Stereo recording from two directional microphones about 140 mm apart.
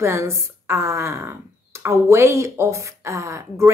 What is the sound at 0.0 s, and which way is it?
A woman's voice, 20° right (ahead or behind).